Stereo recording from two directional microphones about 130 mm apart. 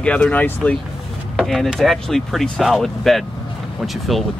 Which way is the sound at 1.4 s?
Centre (ahead or behind).